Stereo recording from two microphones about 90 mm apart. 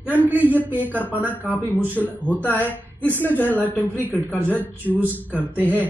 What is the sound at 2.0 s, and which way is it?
Speech, centre (ahead or behind).